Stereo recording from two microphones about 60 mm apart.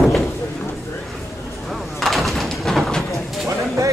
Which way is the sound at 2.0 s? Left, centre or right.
Centre.